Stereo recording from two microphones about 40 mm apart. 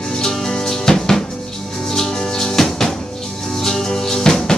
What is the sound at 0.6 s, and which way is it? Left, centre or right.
Drum, centre.